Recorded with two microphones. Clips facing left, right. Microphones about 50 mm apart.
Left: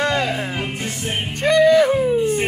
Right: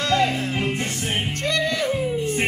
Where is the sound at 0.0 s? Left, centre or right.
Left.